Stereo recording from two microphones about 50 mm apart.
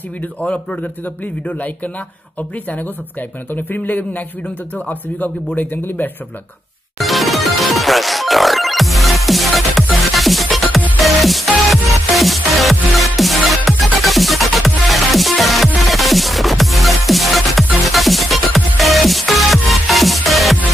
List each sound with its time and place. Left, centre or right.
0.4 s a man's voice: left
2.7 s speech: left
7.0 s music: centre